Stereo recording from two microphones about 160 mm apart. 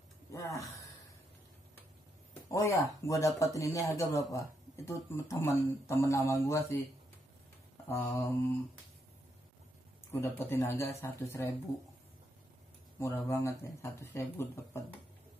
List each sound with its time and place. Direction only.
0.3 s a sound: 20° left (ahead or behind)
2.5 s speech: 20° left (ahead or behind)
7.9 s speech: 15° left (ahead or behind)
10.1 s speech: 15° left (ahead or behind)
13.0 s speech: 15° left (ahead or behind)